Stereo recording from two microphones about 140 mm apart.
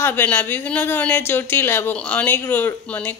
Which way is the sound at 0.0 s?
15° left (ahead or behind).